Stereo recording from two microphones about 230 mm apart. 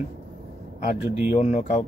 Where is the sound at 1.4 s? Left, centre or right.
Left.